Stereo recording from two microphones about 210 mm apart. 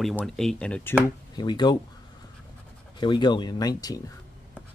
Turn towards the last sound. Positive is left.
turn(degrees=15)  # may be behind; listen again after turning